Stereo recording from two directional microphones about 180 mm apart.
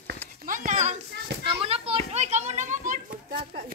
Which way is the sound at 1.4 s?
30° right (ahead or behind).